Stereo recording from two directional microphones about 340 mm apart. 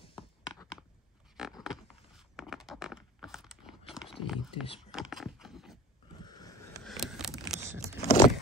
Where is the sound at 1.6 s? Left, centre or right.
Centre.